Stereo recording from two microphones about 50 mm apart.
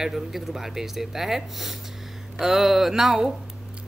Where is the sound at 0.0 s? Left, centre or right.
Centre.